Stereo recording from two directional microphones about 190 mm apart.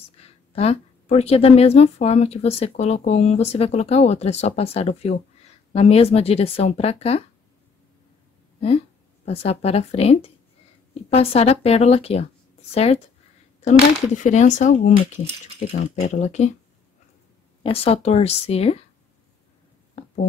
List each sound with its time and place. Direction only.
0.5 s a woman's voice: 30° left (ahead or behind)
9.2 s a woman's voice: 30° left (ahead or behind)
17.6 s a woman's voice: 30° left (ahead or behind)